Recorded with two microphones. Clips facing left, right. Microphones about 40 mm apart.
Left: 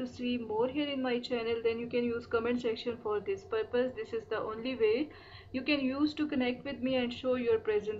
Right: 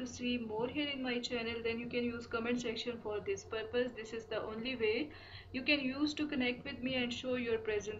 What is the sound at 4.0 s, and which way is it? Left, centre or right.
Speech, left.